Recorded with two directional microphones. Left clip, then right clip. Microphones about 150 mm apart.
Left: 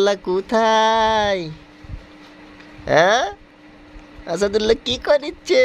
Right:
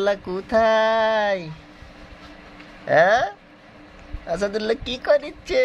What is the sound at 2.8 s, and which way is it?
Speech, 45° left (ahead or behind).